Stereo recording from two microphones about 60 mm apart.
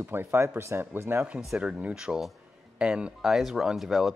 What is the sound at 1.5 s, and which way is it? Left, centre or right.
Speech, centre.